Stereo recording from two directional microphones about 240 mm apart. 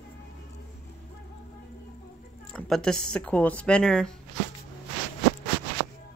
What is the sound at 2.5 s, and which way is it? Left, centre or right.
Speech, centre.